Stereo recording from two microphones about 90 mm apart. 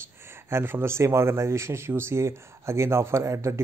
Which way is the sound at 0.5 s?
25° right (ahead or behind).